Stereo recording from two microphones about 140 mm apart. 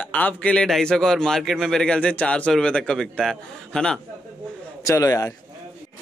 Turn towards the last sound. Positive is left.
turn(degrees=25)  # may be behind; listen again after turning